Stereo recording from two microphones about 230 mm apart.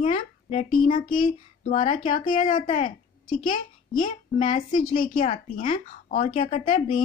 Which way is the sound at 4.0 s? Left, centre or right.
Left.